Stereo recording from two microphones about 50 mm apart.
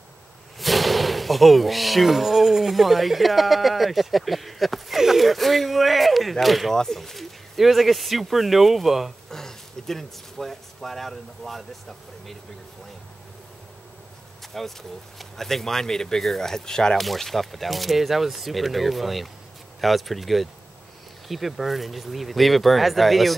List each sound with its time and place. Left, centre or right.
0.6 s speech: centre
9.3 s speech: centre
14.5 s speech: centre
17.0 s speech: centre